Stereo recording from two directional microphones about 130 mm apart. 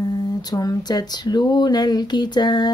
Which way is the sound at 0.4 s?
30° left (ahead or behind).